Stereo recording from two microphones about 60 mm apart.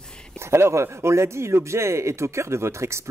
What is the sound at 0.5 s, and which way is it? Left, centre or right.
Speech, right.